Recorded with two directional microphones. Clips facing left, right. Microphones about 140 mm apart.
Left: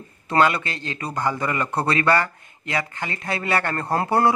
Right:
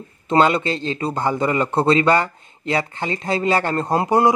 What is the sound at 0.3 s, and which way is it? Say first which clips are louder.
A man's voice: right 3 dB; 25° right (ahead or behind).